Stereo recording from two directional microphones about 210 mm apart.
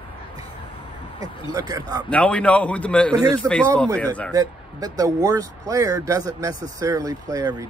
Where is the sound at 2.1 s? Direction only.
5° left (ahead or behind).